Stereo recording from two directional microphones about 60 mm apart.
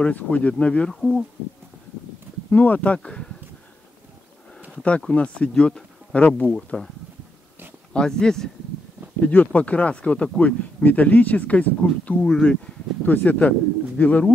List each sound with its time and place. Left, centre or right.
0.0 s speech: left
2.5 s speech: left
5.1 s speech: centre
6.1 s speech: left
6.5 s speech: centre
7.9 s speech: centre
9.2 s speech: left
12.2 s speech: centre
13.0 s speech: left